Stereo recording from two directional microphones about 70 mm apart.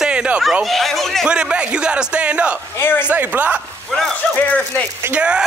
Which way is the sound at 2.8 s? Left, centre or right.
Left.